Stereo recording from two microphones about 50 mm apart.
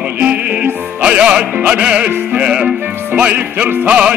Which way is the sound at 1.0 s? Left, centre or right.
Right.